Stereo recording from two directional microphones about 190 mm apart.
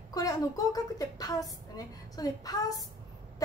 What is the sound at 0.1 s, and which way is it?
A woman's voice, 20° left (ahead or behind).